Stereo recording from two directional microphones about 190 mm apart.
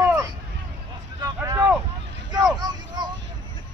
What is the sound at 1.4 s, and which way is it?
Vehicle, 20° right (ahead or behind).